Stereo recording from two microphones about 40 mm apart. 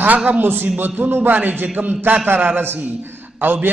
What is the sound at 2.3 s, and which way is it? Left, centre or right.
Speech, right.